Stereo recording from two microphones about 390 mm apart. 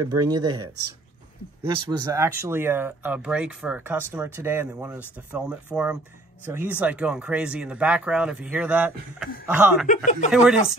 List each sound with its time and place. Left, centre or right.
0.3 s speech: centre
9.8 s speech: centre
10.3 s speech: centre